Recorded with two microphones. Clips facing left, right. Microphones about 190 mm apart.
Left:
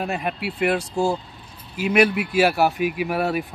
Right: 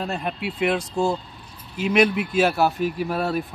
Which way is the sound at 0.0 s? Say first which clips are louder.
Left 1 dB; 10° left (ahead or behind).